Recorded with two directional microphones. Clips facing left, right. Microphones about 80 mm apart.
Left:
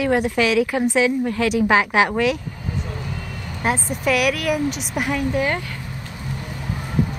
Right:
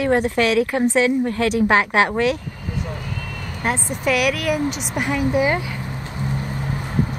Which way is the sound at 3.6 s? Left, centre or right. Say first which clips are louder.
Left 1 dB; centre.